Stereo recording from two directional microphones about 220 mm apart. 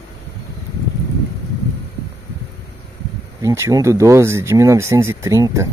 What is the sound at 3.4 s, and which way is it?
Speech, 15° right (ahead or behind).